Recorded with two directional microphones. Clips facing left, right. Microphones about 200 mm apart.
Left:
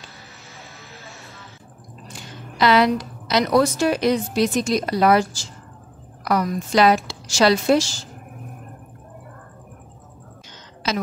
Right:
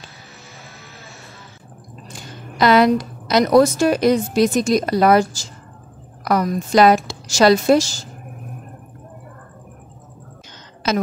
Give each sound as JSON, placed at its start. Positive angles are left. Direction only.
{"t": 2.5, "sound": "a woman's voice", "side_deg": -45}